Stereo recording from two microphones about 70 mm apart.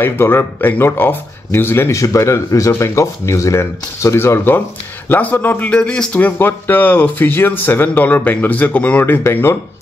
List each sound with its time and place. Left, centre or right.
0.0 s speech: left
2.0 s speech: left
5.7 s speech: centre
6.1 s speech: left
9.0 s speech: left